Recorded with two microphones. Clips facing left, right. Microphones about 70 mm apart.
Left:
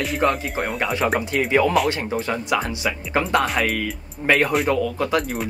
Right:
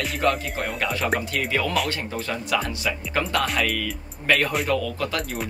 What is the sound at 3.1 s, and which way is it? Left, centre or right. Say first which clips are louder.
Speech: left 4 dB; left.